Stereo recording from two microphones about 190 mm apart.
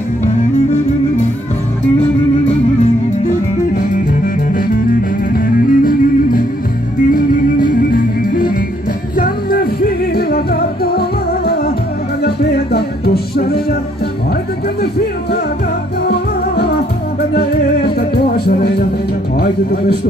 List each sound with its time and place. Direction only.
2.4 s music: 40° left (ahead or behind); by 13.7 s 55° left (ahead or behind)
16.1 s music: 55° left (ahead or behind)